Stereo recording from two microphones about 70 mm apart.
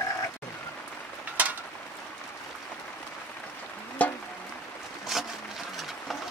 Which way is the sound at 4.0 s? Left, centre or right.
Left.